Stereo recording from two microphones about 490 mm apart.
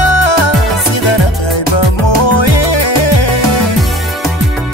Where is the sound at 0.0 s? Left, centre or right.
Left.